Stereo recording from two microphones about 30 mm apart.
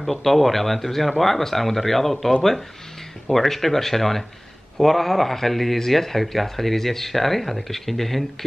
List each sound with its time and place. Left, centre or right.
0.0 s speech: centre